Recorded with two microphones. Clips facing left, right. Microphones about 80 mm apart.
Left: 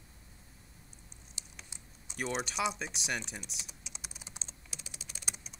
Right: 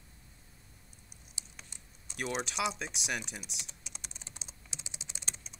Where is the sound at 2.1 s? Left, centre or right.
Centre.